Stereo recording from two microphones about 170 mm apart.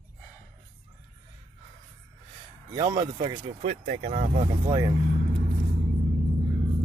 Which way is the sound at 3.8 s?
50° right (ahead or behind).